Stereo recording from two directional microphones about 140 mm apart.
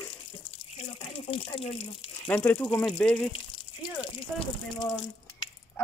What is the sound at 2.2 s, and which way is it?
Speech, 15° left (ahead or behind).